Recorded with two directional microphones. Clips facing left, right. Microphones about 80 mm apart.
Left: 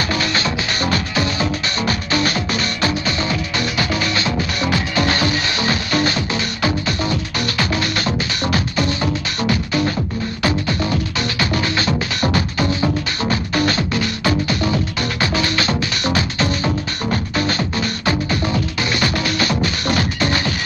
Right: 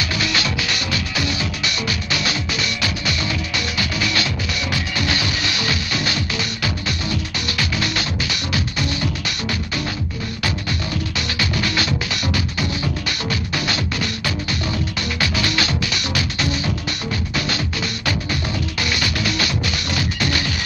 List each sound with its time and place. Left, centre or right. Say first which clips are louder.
0.0 s music: left 3 dB; left